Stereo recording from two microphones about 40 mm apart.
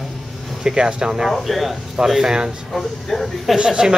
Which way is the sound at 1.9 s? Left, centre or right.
Centre.